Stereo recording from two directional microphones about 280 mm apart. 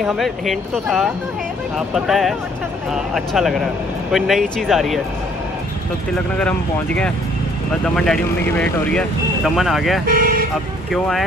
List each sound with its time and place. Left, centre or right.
0.0 s speech: centre
6.3 s speech: centre
10.0 s speech: right
10.9 s speech: centre